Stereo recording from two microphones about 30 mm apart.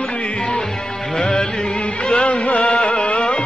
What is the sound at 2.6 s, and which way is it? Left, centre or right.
Music, left.